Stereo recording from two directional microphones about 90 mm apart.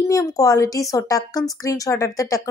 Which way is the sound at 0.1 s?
40° left (ahead or behind).